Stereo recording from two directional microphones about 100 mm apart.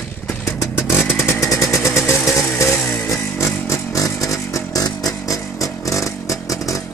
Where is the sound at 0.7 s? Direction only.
20° left (ahead or behind).